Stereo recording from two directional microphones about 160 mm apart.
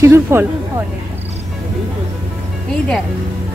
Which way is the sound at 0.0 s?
15° right (ahead or behind).